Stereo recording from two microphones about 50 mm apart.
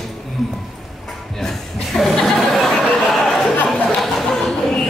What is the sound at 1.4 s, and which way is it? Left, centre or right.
Chuckle, centre.